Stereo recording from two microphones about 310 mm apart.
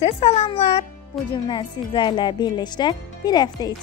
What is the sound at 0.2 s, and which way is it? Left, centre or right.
Speech, centre.